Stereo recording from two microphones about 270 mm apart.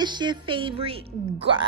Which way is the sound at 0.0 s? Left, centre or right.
Centre.